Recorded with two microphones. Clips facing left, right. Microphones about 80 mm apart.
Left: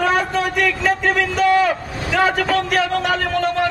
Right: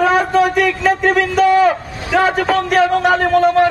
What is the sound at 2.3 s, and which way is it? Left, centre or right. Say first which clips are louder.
Speech: right 3 dB; right.